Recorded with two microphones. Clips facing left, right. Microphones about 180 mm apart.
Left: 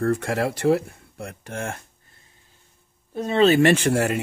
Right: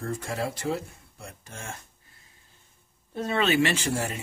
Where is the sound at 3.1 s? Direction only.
15° left (ahead or behind).